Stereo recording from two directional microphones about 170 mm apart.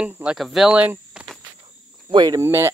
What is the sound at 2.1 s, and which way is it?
Speech, 20° right (ahead or behind).